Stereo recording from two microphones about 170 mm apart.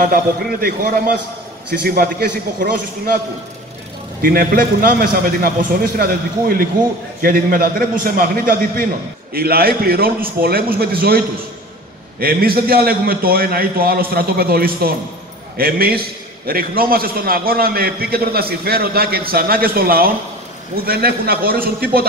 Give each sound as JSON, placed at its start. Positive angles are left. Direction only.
{"t": 0.0, "sound": "a man's voice", "side_deg": -60}
{"t": 4.2, "sound": "a man's voice", "side_deg": -60}